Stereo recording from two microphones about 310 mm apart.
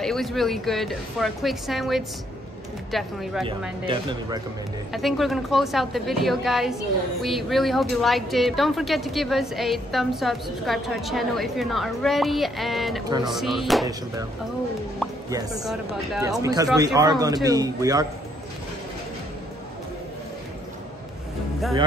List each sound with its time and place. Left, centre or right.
0.0 s a woman's voice: centre
3.8 s speech: centre
4.9 s a woman's voice: centre
15.2 s speech: centre